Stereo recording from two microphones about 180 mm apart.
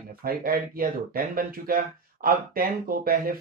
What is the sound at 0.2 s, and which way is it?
Speech, 55° right (ahead or behind).